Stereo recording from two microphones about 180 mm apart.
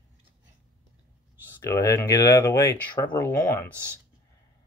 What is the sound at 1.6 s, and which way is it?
Speech, 15° left (ahead or behind).